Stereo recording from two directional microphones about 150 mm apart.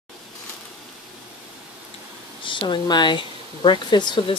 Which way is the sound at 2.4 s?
35° left (ahead or behind).